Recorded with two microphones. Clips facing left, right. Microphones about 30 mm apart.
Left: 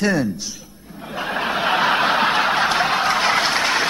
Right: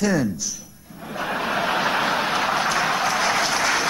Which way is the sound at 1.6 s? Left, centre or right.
Left.